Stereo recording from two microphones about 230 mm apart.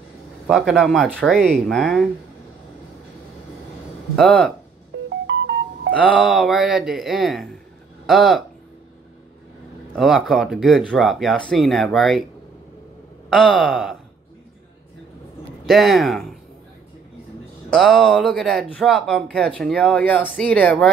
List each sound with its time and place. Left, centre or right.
0.5 s speech: centre
4.2 s speech: centre
4.9 s music: right
5.9 s speech: centre
9.9 s speech: centre
13.3 s speech: centre
15.6 s speech: centre
17.6 s speech: centre